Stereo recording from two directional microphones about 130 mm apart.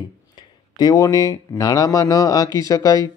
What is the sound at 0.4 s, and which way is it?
Speech, 30° left (ahead or behind).